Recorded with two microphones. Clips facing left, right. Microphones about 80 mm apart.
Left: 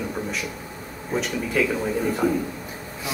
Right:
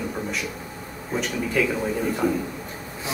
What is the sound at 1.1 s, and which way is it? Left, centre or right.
Speech, centre.